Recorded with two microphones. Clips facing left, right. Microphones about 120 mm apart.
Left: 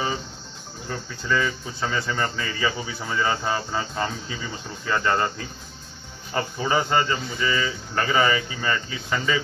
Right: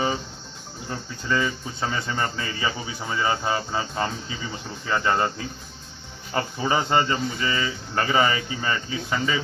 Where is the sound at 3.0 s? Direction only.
5° right (ahead or behind).